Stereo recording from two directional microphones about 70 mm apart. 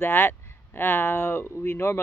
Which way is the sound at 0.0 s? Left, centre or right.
Left.